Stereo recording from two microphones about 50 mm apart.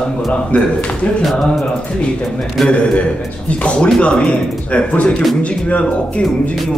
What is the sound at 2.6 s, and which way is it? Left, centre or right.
Speech, left.